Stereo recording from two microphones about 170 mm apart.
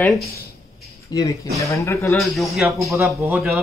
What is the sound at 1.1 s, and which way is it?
Speech, 25° left (ahead or behind).